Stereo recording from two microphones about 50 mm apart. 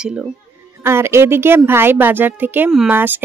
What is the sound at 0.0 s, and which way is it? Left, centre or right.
Speech, centre.